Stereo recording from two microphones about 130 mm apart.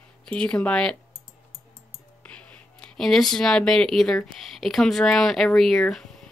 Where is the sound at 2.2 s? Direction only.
10° left (ahead or behind).